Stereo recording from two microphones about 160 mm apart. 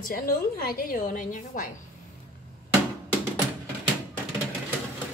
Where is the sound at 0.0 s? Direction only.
65° left (ahead or behind).